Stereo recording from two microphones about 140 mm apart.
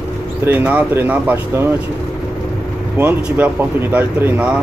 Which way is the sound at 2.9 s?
15° right (ahead or behind).